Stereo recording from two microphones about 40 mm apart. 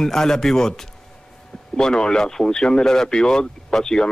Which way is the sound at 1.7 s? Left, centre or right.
Centre.